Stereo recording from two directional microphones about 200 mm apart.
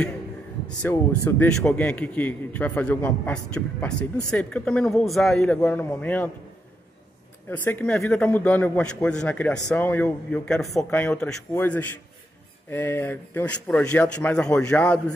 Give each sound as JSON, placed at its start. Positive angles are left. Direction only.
{"t": 0.7, "sound": "speech", "side_deg": 10}
{"t": 7.4, "sound": "speech", "side_deg": 10}